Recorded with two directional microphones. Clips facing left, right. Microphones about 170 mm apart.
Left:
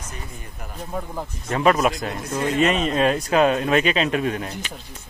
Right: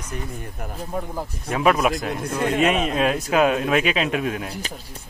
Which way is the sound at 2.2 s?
55° right (ahead or behind).